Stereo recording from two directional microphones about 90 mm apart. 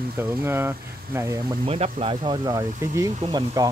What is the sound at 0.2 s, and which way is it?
Speech, 25° right (ahead or behind).